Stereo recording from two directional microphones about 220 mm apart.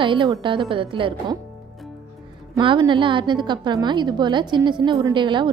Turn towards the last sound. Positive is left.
turn(degrees=-20)  # may be behind; listen again after turning